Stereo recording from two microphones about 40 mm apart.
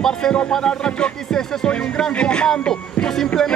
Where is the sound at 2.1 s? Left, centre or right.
Left.